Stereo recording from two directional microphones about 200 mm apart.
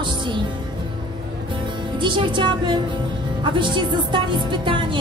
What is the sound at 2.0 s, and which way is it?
Speech, 25° right (ahead or behind).